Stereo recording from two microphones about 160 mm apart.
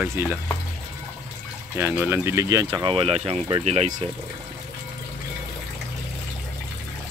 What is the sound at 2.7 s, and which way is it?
Speech, 30° right (ahead or behind).